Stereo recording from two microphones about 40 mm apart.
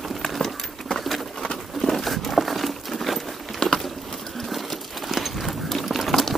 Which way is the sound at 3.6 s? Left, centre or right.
Centre.